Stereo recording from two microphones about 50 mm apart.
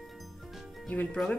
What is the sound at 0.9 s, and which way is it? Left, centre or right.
Speech, left.